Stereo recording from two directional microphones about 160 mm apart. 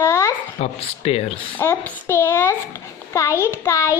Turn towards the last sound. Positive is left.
turn(degrees=20)  # may be behind; listen again after turning